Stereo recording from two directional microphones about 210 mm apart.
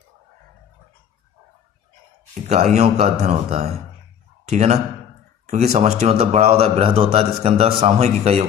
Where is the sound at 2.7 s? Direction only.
30° right (ahead or behind).